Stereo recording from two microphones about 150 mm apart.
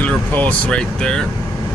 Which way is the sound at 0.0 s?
10° left (ahead or behind).